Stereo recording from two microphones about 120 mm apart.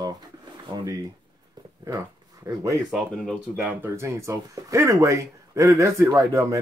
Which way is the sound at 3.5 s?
15° right (ahead or behind).